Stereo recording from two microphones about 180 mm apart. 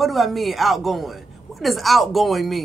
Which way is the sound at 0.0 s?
Centre (ahead or behind).